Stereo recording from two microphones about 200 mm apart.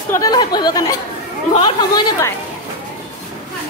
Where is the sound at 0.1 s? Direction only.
20° left (ahead or behind).